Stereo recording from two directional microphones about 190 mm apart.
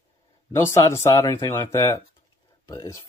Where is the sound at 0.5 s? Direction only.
15° left (ahead or behind).